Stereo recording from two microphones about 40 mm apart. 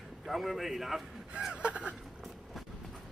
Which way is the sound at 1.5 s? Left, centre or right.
Right.